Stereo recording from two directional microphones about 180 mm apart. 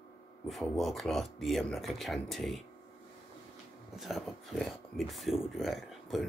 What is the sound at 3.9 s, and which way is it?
Speech, centre (ahead or behind).